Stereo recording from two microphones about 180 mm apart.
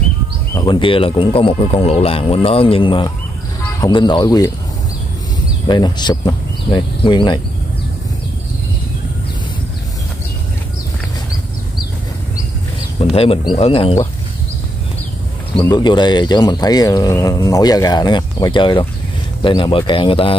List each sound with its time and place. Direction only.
0.6 s speech: 25° left (ahead or behind)
5.7 s speech: 25° left (ahead or behind)
13.1 s speech: 30° left (ahead or behind)
15.6 s speech: 25° left (ahead or behind)